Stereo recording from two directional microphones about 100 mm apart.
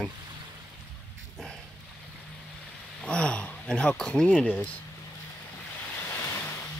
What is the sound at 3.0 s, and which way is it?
Speech, 10° left (ahead or behind).